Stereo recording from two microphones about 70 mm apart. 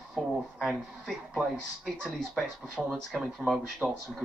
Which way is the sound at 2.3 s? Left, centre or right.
Centre.